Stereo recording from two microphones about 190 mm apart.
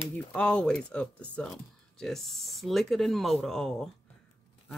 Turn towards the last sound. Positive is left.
turn(degrees=0)  # may be behind; listen again after turning